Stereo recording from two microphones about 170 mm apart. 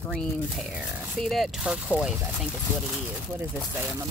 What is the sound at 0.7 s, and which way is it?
A woman's voice, centre (ahead or behind).